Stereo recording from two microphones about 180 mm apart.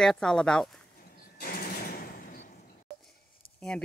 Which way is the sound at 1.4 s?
55° left (ahead or behind).